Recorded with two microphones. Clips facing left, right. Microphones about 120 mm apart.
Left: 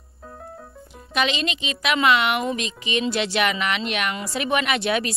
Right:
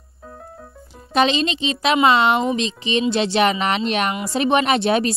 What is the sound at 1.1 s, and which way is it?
Speech, 35° right (ahead or behind).